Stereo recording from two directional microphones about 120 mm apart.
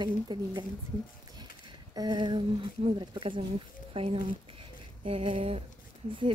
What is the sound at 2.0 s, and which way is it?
A woman's voice, 40° right (ahead or behind).